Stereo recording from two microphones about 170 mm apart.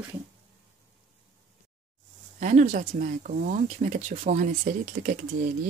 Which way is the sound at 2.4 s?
45° right (ahead or behind).